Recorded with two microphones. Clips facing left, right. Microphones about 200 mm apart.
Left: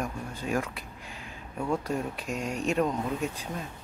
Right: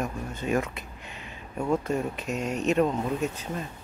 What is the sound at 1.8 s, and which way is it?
Speech, 5° right (ahead or behind).